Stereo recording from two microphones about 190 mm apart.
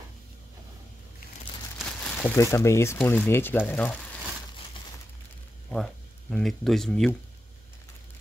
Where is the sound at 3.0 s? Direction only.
10° left (ahead or behind).